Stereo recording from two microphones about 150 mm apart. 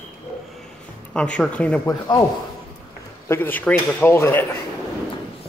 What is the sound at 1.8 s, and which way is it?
Speech, 25° left (ahead or behind).